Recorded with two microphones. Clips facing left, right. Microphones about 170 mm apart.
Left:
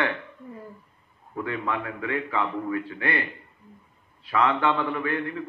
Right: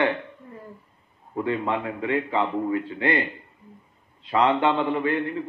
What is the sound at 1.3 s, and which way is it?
A man's voice, 25° right (ahead or behind).